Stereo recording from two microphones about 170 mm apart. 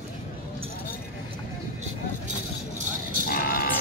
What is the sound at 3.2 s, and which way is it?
Music, 60° left (ahead or behind).